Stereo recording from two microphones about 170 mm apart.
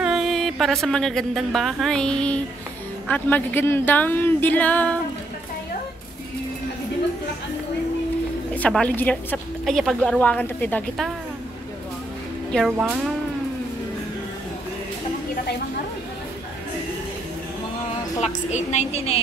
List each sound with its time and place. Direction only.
0.0 s a woman's voice: centre (ahead or behind)
8.5 s a woman's voice: 5° left (ahead or behind)
12.4 s speech: 5° left (ahead or behind)
18.2 s a woman's voice: 45° left (ahead or behind)